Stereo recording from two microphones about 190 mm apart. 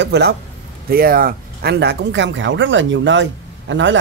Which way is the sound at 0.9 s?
50° right (ahead or behind).